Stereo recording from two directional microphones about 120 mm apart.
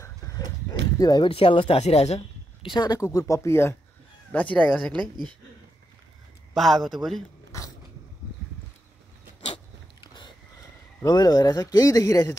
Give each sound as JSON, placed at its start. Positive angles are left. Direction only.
{"t": 0.9, "sound": "speech", "side_deg": 35}
{"t": 1.3, "sound": "speech", "side_deg": 50}
{"t": 1.8, "sound": "speech", "side_deg": 65}
{"t": 2.7, "sound": "speech", "side_deg": 35}
{"t": 4.6, "sound": "speech", "side_deg": -5}
{"t": 6.5, "sound": "speech", "side_deg": 0}
{"t": 9.4, "sound": "a sound", "side_deg": 40}
{"t": 11.0, "sound": "speech", "side_deg": 35}